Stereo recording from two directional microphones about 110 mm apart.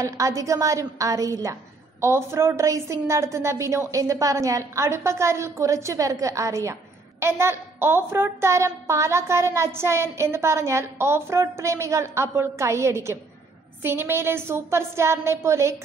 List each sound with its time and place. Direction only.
0.0 s a woman's voice: 30° right (ahead or behind)